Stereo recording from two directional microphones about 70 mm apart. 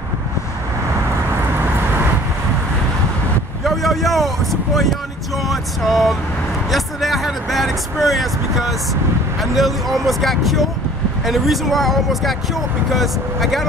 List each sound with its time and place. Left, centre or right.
1.3 s vehicle: right
3.6 s vehicle: centre
5.5 s speech: centre